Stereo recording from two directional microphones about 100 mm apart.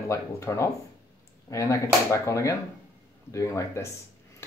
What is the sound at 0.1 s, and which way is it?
Speech, 30° left (ahead or behind).